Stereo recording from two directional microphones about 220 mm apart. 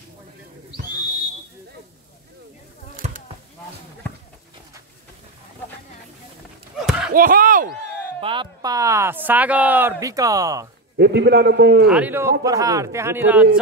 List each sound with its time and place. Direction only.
3.0 s a sound: 30° right (ahead or behind)
6.8 s a sound: 5° right (ahead or behind)
7.2 s speech: 40° right (ahead or behind)
8.2 s speech: 20° right (ahead or behind)
11.0 s a man's voice: 50° right (ahead or behind)
11.9 s speech: 10° right (ahead or behind)